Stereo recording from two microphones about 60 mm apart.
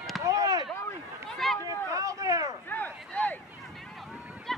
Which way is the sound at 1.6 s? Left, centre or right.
Right.